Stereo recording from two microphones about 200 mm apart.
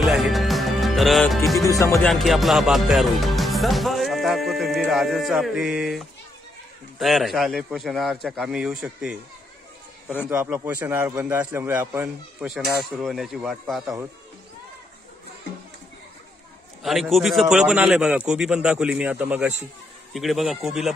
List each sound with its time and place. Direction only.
0.0 s music: centre (ahead or behind)
1.6 s music: 15° left (ahead or behind)
2.0 s a man's voice: centre (ahead or behind)
10.2 s a man's voice: 10° right (ahead or behind)
16.8 s a man's voice: centre (ahead or behind)